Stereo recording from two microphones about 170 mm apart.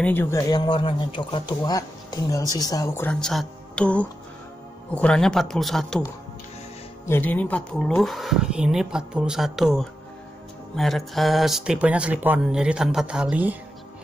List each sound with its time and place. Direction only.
0.0 s a woman's voice: 10° left (ahead or behind)
7.1 s a woman's voice: 10° left (ahead or behind); by 13.6 s 10° right (ahead or behind)